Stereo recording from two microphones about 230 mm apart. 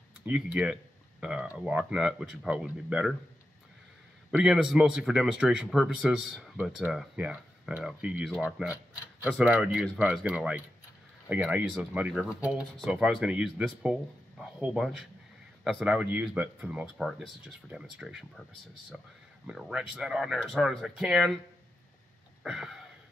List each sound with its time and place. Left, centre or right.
0.2 s speech: centre
4.3 s speech: centre
22.4 s wheeze: centre